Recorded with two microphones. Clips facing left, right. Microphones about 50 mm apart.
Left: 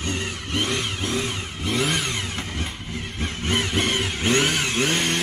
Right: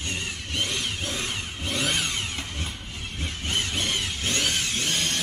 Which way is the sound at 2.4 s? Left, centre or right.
Left.